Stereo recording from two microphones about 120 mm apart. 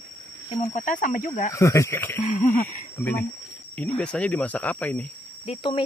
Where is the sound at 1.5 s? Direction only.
25° left (ahead or behind).